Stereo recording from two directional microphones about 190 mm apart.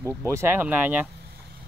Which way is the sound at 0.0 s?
15° right (ahead or behind).